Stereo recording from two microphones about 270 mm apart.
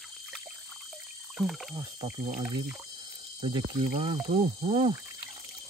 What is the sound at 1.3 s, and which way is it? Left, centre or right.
Speech, centre.